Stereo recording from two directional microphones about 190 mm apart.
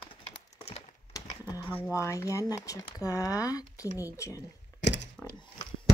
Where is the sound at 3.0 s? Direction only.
15° left (ahead or behind).